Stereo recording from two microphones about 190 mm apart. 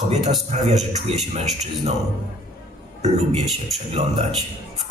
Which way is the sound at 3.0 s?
35° right (ahead or behind).